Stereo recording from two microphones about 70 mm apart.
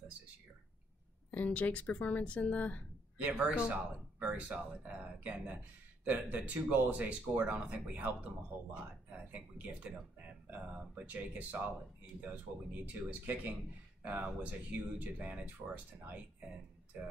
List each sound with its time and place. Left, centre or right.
1.3 s speech: centre
3.2 s speech: centre
12.8 s speech: right